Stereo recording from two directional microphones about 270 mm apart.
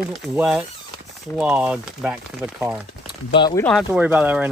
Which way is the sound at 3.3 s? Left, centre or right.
Centre.